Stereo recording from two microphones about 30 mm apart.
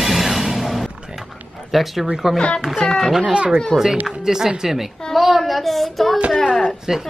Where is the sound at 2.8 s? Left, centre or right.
Centre.